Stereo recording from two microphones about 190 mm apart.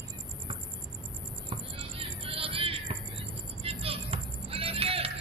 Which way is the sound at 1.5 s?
30° right (ahead or behind).